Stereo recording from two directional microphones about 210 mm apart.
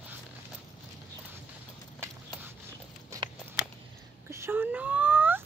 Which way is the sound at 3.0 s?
20° right (ahead or behind).